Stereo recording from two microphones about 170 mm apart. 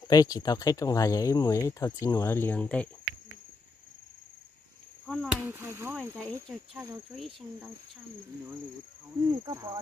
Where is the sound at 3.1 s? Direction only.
65° left (ahead or behind).